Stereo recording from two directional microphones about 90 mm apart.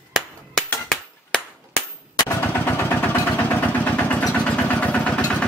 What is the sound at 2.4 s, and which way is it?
Percussion, 25° left (ahead or behind).